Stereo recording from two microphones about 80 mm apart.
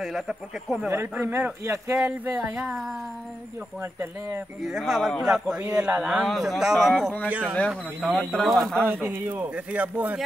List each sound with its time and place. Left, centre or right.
0.0 s speech: centre
0.8 s speech: right
2.0 s speech: centre
3.8 s speech: right
4.6 s speech: centre
6.2 s speech: centre
7.2 s speech: centre
7.5 s speech: centre
8.1 s speech: centre
8.8 s speech: right